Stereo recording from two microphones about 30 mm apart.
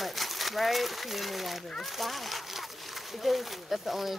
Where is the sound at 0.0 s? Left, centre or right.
Centre.